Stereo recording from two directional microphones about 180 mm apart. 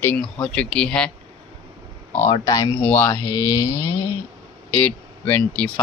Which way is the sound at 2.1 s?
15° left (ahead or behind).